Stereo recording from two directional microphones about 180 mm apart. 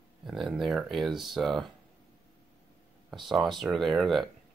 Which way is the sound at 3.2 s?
Centre (ahead or behind).